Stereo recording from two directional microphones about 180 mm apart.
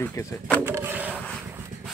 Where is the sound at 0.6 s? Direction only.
10° right (ahead or behind).